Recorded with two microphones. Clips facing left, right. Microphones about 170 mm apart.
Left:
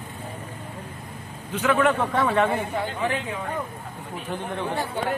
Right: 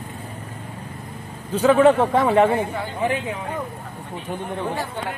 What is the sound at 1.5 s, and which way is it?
Speech, 35° right (ahead or behind).